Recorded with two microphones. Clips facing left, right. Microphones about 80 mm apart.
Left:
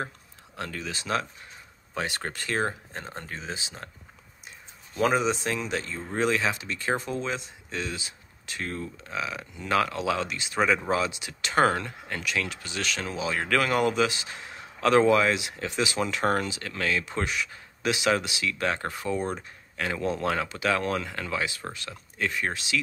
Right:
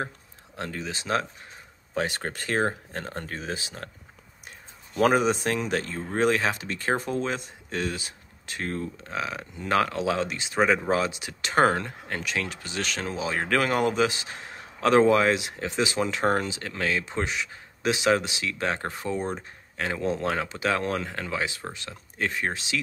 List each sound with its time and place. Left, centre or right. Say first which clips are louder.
0.6 s speech: right 1 dB; right
2.9 s speech: right 3 dB; right